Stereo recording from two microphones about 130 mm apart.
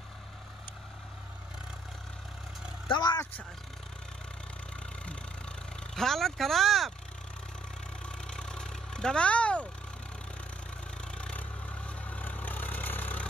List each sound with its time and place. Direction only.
2.9 s vehicle: 35° left (ahead or behind)
5.9 s speech: centre (ahead or behind)
8.0 s vehicle: 5° left (ahead or behind)
11.1 s vehicle: 10° left (ahead or behind)